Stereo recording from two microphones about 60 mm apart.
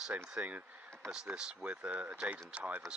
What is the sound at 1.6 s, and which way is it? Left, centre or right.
Speech, right.